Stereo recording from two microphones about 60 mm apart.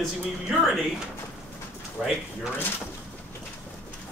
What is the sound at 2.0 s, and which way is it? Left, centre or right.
Cat, centre.